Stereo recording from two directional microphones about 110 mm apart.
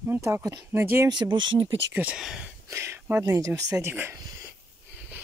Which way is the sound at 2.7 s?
20° right (ahead or behind).